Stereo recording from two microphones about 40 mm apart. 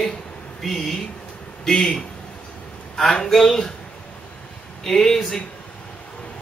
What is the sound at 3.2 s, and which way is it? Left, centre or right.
Speech, centre.